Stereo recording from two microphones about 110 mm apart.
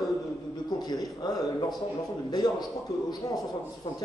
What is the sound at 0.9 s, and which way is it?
Speech, 40° left (ahead or behind).